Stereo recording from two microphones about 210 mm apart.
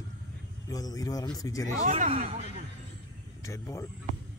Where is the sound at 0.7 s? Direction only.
15° left (ahead or behind).